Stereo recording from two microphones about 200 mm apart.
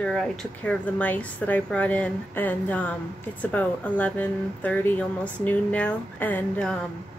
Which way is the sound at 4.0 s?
10° left (ahead or behind).